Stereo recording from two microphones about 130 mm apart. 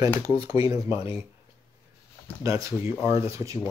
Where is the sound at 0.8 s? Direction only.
45° left (ahead or behind).